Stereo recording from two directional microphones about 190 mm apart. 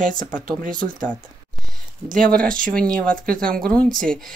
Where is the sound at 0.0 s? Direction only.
45° right (ahead or behind).